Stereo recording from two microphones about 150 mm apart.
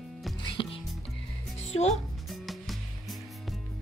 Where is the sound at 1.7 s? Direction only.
45° left (ahead or behind).